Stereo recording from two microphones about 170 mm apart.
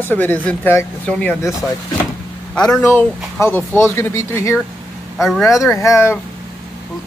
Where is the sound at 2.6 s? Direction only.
15° left (ahead or behind).